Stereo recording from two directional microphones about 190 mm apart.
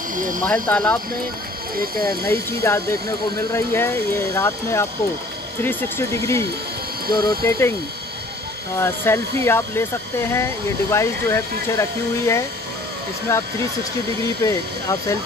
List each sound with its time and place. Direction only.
0.1 s cricket: 45° right (ahead or behind)
0.5 s speech: 5° left (ahead or behind)
2.2 s speech: 15° left (ahead or behind)
8.7 s speech: 15° left (ahead or behind)